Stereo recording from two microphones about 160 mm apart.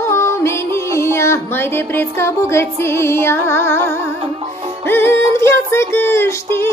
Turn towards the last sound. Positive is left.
turn(degrees=15)  # may be behind; listen again after turning